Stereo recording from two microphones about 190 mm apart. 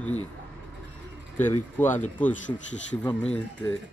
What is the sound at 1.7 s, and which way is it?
Speech, 10° left (ahead or behind).